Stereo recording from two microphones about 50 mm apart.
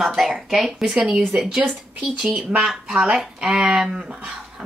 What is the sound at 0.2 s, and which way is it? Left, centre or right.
Speech, centre.